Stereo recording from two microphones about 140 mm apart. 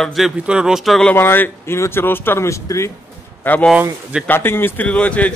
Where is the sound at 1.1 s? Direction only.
15° left (ahead or behind).